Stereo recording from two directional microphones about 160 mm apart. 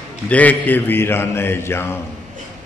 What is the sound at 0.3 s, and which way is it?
Speech, 10° left (ahead or behind).